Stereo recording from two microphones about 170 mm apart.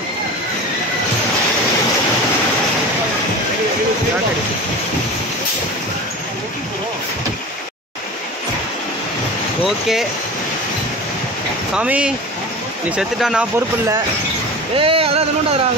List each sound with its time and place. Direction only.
9.7 s speech: centre (ahead or behind)
11.7 s speech: 5° right (ahead or behind)
14.8 s a sound: 35° right (ahead or behind)